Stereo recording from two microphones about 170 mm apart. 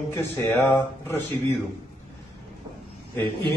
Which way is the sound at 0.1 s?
15° left (ahead or behind).